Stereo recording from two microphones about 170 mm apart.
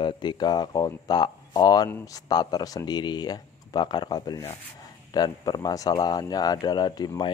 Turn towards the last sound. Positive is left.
turn(degrees=25)  # may be behind; listen again after turning